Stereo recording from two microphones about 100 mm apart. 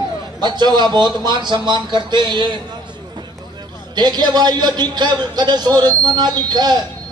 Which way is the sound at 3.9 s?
45° right (ahead or behind).